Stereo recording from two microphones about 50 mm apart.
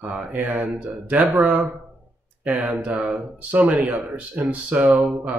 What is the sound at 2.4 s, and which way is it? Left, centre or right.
Speech, right.